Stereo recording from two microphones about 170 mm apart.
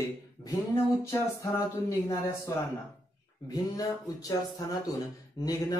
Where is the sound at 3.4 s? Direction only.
20° left (ahead or behind).